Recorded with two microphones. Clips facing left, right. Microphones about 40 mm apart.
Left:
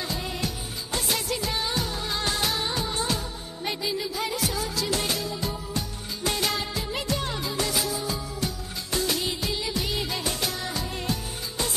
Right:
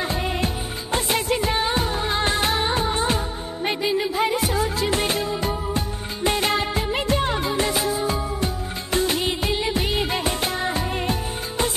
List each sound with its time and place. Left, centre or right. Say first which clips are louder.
0.1 s music of bollywood: right 6 dB; right
0.9 s music: right 6 dB; right
8.9 s music of bollywood: right 5 dB; right